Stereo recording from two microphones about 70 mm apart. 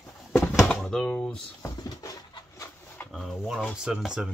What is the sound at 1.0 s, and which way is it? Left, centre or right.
Speech, centre.